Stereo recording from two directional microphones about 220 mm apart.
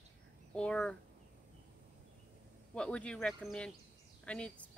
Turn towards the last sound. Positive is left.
turn(degrees=5)  # may be behind; listen again after turning